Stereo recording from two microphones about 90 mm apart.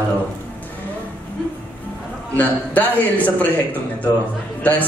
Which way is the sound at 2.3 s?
20° left (ahead or behind).